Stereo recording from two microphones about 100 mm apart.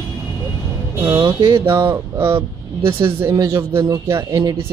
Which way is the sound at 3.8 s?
30° right (ahead or behind).